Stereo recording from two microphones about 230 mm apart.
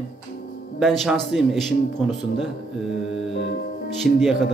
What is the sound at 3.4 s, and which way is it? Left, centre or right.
Music, left.